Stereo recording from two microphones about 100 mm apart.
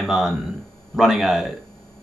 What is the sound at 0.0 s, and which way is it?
Speech, 5° right (ahead or behind).